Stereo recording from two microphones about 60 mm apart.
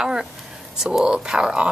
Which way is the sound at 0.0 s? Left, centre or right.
Centre.